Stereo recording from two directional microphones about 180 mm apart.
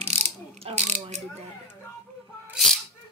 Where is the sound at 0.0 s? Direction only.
35° right (ahead or behind).